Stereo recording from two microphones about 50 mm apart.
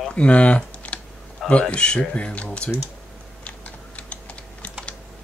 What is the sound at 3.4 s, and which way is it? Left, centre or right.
Typing, left.